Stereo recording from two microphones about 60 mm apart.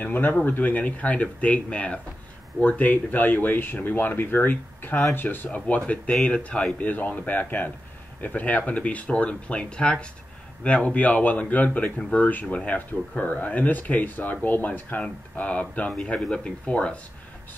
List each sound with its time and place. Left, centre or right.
0.0 s speech: left
6.2 s speech: centre